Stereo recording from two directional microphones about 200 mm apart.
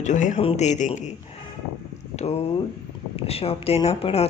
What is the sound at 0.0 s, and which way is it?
Speech, 40° left (ahead or behind).